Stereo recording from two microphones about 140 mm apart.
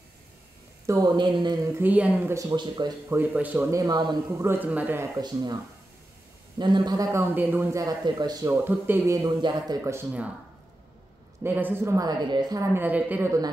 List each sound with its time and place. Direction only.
0.8 s speech: 25° right (ahead or behind)
1.7 s speech: 15° right (ahead or behind)
2.3 s speech: 25° right (ahead or behind)
3.1 s speech: 10° right (ahead or behind)
3.8 s a man's voice: 30° right (ahead or behind)
4.5 s speech: 10° right (ahead or behind)
5.2 s speech: 30° right (ahead or behind)
6.6 s a man's voice: 30° right (ahead or behind)
8.5 s speech: 15° right (ahead or behind)
9.4 s speech: 35° right (ahead or behind)
9.8 s a man's voice: 20° right (ahead or behind)
11.4 s a man's voice: 15° right (ahead or behind); by 12.6 s 30° right (ahead or behind)
12.7 s speech: 10° right (ahead or behind)